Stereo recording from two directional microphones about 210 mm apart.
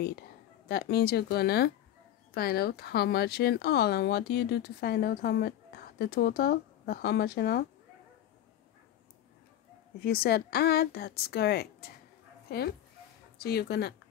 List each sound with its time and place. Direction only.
0.7 s speech: 50° left (ahead or behind)
9.9 s speech: 45° left (ahead or behind)